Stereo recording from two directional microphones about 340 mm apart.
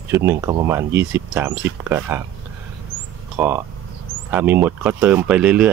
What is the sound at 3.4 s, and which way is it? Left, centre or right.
Speech, centre.